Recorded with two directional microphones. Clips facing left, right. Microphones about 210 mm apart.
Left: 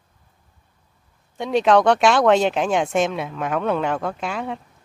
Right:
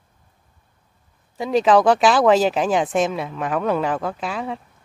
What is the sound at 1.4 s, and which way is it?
Speech, centre (ahead or behind).